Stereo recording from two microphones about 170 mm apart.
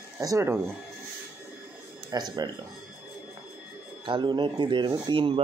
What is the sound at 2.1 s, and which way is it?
Speech, 25° right (ahead or behind).